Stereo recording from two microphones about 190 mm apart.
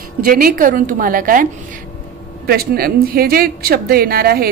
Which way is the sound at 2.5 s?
55° right (ahead or behind).